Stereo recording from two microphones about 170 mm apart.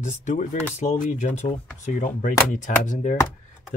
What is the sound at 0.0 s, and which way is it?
Speech, 45° left (ahead or behind).